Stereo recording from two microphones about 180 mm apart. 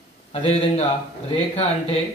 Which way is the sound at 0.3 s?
35° left (ahead or behind).